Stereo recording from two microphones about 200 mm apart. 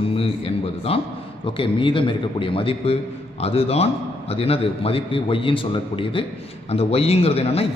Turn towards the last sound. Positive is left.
turn(degrees=30)  # may be behind; listen again after turning